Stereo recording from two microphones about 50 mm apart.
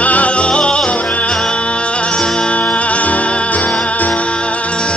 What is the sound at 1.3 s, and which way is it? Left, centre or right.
Music, centre.